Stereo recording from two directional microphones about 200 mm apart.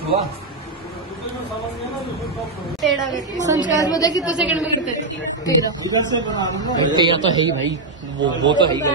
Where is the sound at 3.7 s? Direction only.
20° left (ahead or behind).